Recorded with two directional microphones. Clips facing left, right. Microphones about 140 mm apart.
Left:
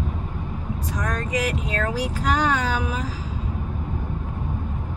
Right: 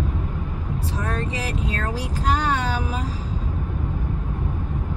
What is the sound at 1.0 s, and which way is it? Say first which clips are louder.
Speech: left 3 dB; 30° right (ahead or behind).